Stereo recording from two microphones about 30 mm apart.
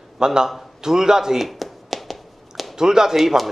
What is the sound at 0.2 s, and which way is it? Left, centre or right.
Speech, right.